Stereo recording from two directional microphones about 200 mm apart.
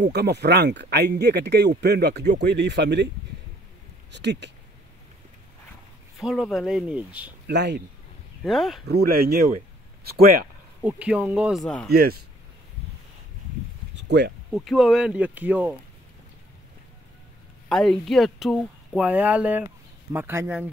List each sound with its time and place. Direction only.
0.1 s speech: 55° right (ahead or behind)
4.1 s speech: 60° right (ahead or behind)
6.1 s speech: centre (ahead or behind)
7.4 s speech: 55° right (ahead or behind)
8.5 s speech: centre (ahead or behind)
8.8 s speech: 50° right (ahead or behind)
10.8 s speech: 5° right (ahead or behind)
11.9 s speech: 50° right (ahead or behind)
14.0 s speech: 55° right (ahead or behind)
14.5 s speech: centre (ahead or behind)
17.6 s speech: centre (ahead or behind)